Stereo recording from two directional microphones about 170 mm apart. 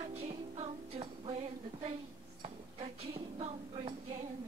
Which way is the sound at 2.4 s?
30° right (ahead or behind).